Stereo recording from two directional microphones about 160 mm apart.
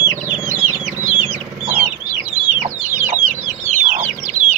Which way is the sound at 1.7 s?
55° right (ahead or behind).